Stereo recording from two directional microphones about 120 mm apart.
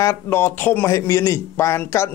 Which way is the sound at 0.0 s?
20° left (ahead or behind).